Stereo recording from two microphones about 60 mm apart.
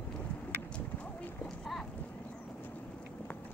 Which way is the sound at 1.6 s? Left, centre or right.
Centre.